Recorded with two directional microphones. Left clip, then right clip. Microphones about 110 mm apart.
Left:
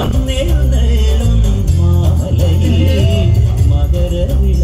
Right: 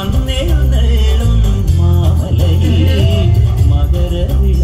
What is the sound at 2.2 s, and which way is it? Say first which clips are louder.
Music: even; 40° right (ahead or behind).